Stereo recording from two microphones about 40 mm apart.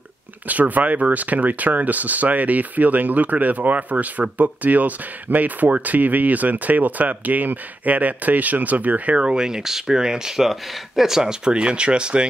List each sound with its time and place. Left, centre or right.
0.5 s speech: right
9.2 s speech: right